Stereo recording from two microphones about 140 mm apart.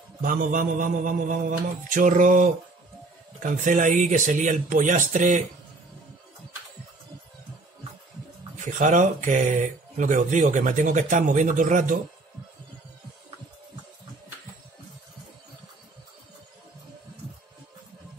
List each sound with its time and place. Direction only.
0.2 s a man's voice: 75° right (ahead or behind)
8.5 s speech: 65° right (ahead or behind)